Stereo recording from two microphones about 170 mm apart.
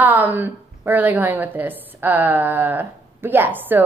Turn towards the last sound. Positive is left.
turn(degrees=-10)  # may be behind; listen again after turning